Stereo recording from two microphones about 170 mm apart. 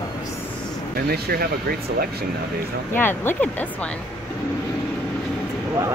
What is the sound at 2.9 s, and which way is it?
Speech, 10° left (ahead or behind).